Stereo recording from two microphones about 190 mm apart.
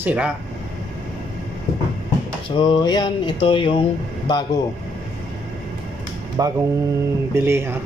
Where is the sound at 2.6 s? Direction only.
25° left (ahead or behind).